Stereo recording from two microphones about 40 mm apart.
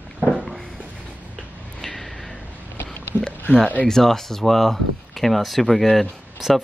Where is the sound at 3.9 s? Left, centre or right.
Centre.